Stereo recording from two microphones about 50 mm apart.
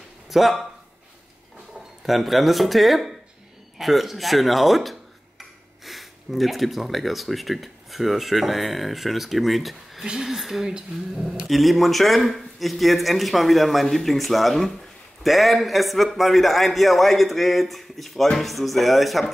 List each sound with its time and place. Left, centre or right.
0.3 s speech: centre
2.0 s a man's voice: centre
10.7 s a woman's voice: centre
11.4 s a man's voice: centre